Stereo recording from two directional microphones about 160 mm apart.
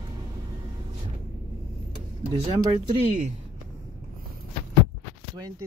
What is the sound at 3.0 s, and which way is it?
Speech, 50° right (ahead or behind).